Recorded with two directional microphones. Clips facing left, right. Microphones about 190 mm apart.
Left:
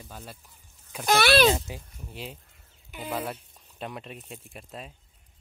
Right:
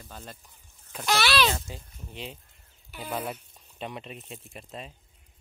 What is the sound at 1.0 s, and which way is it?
Speech, 55° left (ahead or behind).